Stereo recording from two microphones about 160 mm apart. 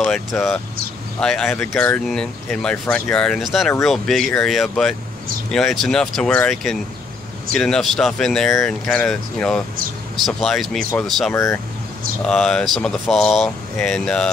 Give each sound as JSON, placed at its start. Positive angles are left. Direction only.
{"t": 0.3, "sound": "speech", "side_deg": 5}
{"t": 11.3, "sound": "speech", "side_deg": 20}
{"t": 12.3, "sound": "speech", "side_deg": 5}